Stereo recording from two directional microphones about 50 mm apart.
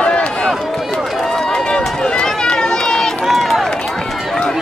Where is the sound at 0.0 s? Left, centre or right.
Centre.